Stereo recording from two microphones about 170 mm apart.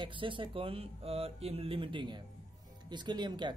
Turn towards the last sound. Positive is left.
turn(degrees=-25)  # may be behind; listen again after turning